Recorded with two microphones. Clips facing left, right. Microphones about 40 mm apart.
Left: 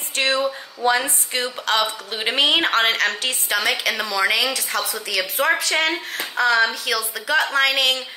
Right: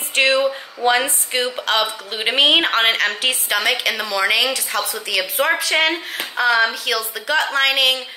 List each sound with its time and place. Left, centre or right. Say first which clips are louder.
0.4 s speech: right 3 dB; right
1.0 s a woman's voice: right 3 dB; centre